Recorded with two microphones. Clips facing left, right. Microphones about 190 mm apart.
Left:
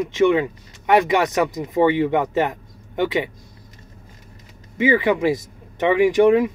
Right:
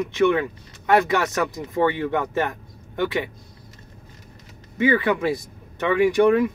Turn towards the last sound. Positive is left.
turn(degrees=15)  # may be behind; listen again after turning